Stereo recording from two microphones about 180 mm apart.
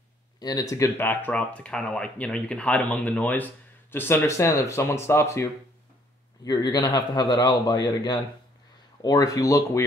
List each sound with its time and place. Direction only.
0.4 s a man's voice: 20° left (ahead or behind)